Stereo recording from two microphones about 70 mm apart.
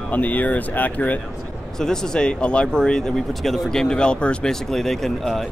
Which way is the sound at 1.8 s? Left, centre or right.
Centre.